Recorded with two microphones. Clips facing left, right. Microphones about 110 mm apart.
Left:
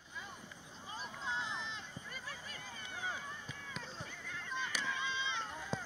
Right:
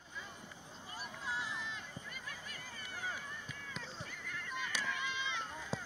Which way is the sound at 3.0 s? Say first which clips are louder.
Left 1 dB; 20° left (ahead or behind).